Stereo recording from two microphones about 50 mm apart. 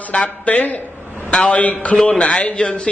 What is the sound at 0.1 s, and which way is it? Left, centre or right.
A man's voice, left.